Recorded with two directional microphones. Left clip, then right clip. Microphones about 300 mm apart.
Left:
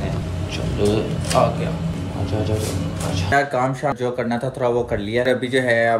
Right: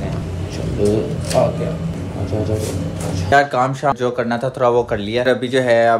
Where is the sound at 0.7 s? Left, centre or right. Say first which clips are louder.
Right 3 dB; centre.